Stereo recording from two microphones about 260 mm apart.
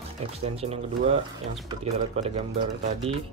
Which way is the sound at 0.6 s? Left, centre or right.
Right.